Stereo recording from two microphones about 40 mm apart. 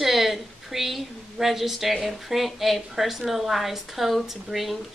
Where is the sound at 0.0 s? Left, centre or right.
Centre.